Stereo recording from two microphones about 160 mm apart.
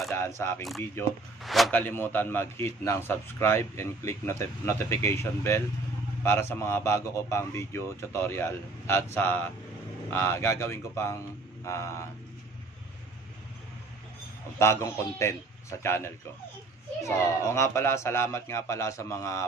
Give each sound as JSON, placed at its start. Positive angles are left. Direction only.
{"t": 0.4, "sound": "a man's voice", "side_deg": 15}
{"t": 1.4, "sound": "a sound", "side_deg": 0}
{"t": 1.8, "sound": "a man's voice", "side_deg": 10}
{"t": 11.6, "sound": "a sound", "side_deg": 20}
{"t": 14.6, "sound": "a man's voice", "side_deg": 15}
{"t": 17.0, "sound": "a man's voice", "side_deg": 15}